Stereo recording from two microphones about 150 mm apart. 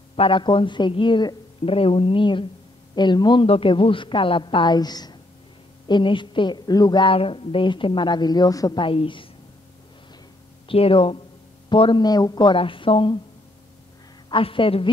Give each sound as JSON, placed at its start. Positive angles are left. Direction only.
{"t": 0.1, "sound": "a woman's voice", "side_deg": 35}
{"t": 10.7, "sound": "a woman's voice", "side_deg": 35}
{"t": 14.3, "sound": "a woman's voice", "side_deg": 35}